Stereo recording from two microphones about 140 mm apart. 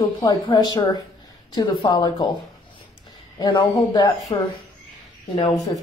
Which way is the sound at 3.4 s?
30° left (ahead or behind).